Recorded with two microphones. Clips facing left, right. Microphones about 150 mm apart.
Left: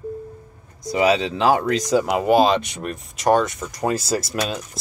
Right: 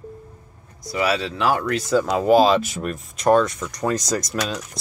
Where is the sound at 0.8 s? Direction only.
20° left (ahead or behind).